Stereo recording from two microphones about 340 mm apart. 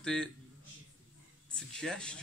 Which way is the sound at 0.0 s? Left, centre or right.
Centre.